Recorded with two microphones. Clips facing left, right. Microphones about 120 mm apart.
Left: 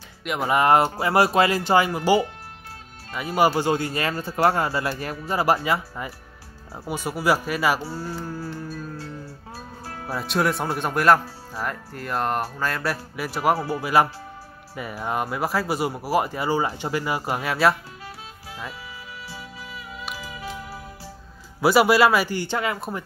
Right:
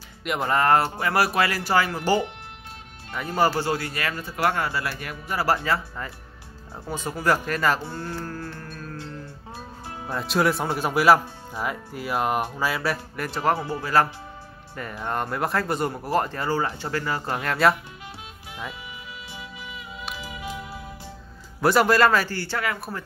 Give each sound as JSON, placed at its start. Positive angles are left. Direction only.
{"t": 0.2, "sound": "speech", "side_deg": 0}
{"t": 0.5, "sound": "speech", "side_deg": 15}
{"t": 5.4, "sound": "speech", "side_deg": 15}
{"t": 10.0, "sound": "speech", "side_deg": 0}
{"t": 21.5, "sound": "speech", "side_deg": 5}